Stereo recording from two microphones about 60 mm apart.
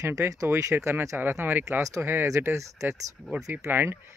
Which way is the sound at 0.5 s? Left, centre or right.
Right.